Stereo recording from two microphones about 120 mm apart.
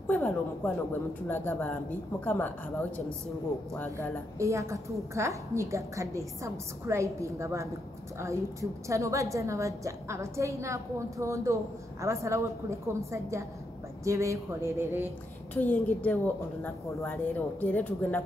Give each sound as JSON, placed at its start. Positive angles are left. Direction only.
{"t": 0.0, "sound": "a sound", "side_deg": 10}
{"t": 1.2, "sound": "a woman's voice", "side_deg": 15}
{"t": 4.4, "sound": "a woman's voice", "side_deg": -25}
{"t": 15.5, "sound": "a woman's voice", "side_deg": 15}